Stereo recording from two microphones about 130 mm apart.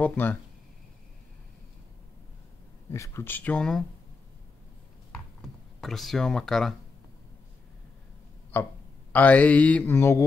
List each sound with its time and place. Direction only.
0.0 s mantra: 15° left (ahead or behind)
2.9 s mantra: 20° left (ahead or behind); by 3.8 s 5° left (ahead or behind)
5.8 s speech: centre (ahead or behind)
8.5 s mantra: 15° left (ahead or behind)